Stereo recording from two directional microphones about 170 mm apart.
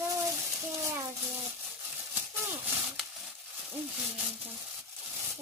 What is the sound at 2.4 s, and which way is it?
Horse, 5° right (ahead or behind).